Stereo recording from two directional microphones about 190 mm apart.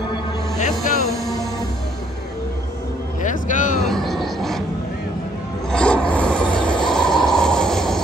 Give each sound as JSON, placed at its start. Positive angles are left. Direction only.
{"t": 0.6, "sound": "music", "side_deg": 40}
{"t": 3.2, "sound": "music", "side_deg": 40}
{"t": 3.8, "sound": "music", "side_deg": 0}
{"t": 5.7, "sound": "filing", "side_deg": 5}